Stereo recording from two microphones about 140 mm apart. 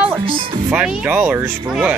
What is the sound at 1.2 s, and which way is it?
Speech, 15° right (ahead or behind).